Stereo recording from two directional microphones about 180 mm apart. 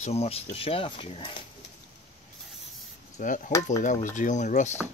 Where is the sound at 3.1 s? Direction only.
45° left (ahead or behind).